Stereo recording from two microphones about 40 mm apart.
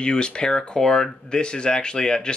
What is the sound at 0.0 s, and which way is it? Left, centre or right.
Speech, left.